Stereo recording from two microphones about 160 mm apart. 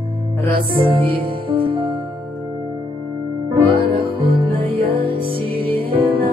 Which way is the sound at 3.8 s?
30° right (ahead or behind).